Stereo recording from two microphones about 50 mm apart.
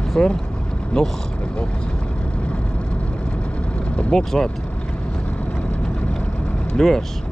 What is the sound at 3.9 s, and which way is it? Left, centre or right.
Speech, centre.